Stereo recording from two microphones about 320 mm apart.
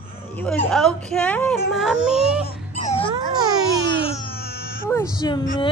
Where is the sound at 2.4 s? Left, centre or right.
Left.